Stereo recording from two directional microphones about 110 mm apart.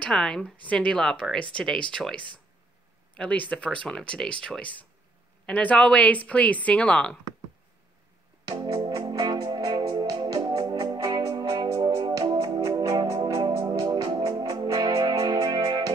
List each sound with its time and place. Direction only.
0.0 s a woman's voice: 5° left (ahead or behind)
8.5 s music: 45° right (ahead or behind)